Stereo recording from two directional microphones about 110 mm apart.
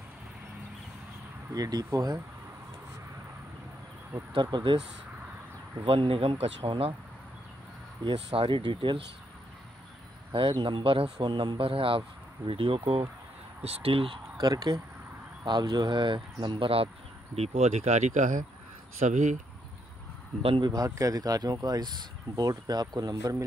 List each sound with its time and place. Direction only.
1.5 s speech: 35° right (ahead or behind)
4.4 s speech: 45° right (ahead or behind)
5.9 s speech: 55° right (ahead or behind)
8.4 s speech: 50° right (ahead or behind)
10.3 s speech: 45° right (ahead or behind)
13.6 s speech: 65° right (ahead or behind)
14.4 s speech: 35° right (ahead or behind); by 16.9 s 55° right (ahead or behind)
17.4 s speech: 70° right (ahead or behind); by 19.3 s 90° right
20.4 s speech: 55° right (ahead or behind)
20.7 s speech: 30° right (ahead or behind)